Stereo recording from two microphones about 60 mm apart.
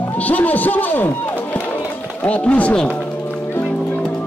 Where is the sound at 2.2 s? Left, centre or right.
Left.